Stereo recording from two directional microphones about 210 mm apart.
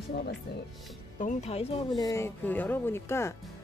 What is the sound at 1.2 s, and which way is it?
Speech, 35° left (ahead or behind).